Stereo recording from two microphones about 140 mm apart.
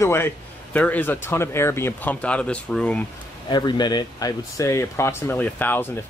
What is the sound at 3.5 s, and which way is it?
Speech, 30° left (ahead or behind).